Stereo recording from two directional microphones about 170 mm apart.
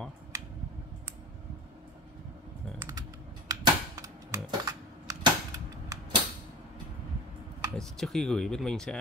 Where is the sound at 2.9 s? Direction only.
20° right (ahead or behind).